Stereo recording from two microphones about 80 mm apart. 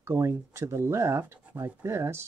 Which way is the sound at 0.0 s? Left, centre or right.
Right.